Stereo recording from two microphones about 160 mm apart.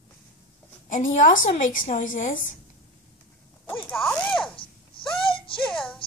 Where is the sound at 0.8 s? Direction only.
55° left (ahead or behind).